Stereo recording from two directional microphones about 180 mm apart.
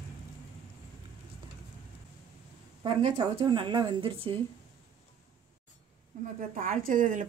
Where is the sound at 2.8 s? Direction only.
35° right (ahead or behind).